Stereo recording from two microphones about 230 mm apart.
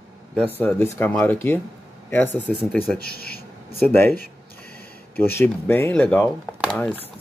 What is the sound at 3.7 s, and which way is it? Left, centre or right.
Speech, centre.